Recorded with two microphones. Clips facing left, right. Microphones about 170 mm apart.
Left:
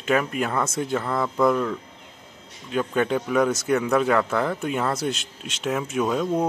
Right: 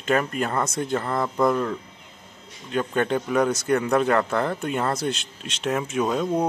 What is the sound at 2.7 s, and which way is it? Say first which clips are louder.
A man's voice: even; 5° left (ahead or behind).